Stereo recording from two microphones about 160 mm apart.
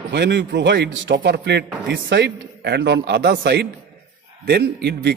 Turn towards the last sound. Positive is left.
turn(degrees=-90)